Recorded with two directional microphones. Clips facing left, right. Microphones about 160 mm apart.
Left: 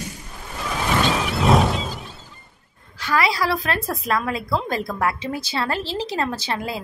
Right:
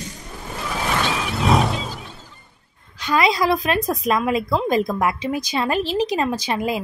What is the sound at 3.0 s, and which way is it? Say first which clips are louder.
A woman's voice: right 3 dB; 20° right (ahead or behind).